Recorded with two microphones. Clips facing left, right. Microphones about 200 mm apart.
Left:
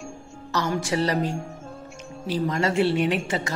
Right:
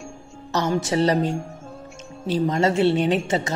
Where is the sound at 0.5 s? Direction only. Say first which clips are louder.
Right 3 dB; 20° right (ahead or behind).